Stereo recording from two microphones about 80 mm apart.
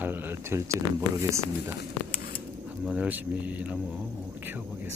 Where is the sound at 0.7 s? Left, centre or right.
Right.